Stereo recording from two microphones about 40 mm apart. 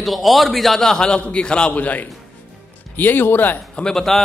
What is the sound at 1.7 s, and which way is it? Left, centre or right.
Speech, left.